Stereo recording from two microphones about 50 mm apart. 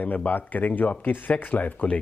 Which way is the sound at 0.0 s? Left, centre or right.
Left.